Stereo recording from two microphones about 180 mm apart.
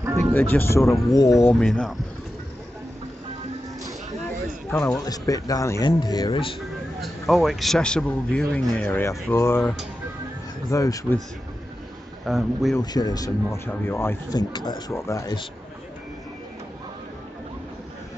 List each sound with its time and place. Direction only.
0.3 s speech: 10° left (ahead or behind)
1.5 s a man's voice: 5° left (ahead or behind)
4.6 s speech: 15° left (ahead or behind)
7.0 s a man's voice: centre (ahead or behind); by 11.1 s 20° left (ahead or behind)
12.3 s a man's voice: centre (ahead or behind)
12.8 s speech: 20° left (ahead or behind)